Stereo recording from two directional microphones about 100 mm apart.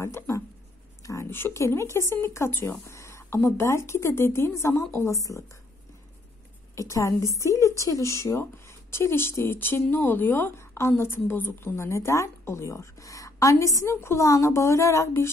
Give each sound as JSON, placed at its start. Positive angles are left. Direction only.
{"t": 0.0, "sound": "writing", "side_deg": 30}
{"t": 1.0, "sound": "a sound", "side_deg": 35}
{"t": 1.3, "sound": "a woman's voice", "side_deg": 25}
{"t": 6.7, "sound": "a woman's voice", "side_deg": 30}